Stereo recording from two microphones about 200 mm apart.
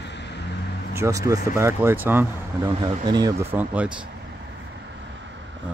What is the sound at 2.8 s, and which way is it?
Speech, 20° right (ahead or behind).